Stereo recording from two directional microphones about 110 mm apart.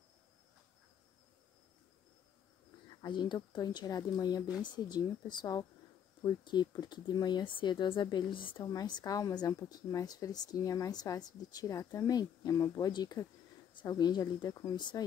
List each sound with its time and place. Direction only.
2.9 s speech: 40° left (ahead or behind)
8.6 s speech: 40° left (ahead or behind)